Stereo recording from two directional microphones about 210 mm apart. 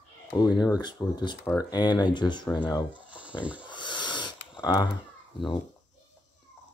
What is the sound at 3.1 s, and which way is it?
Speech, 5° right (ahead or behind).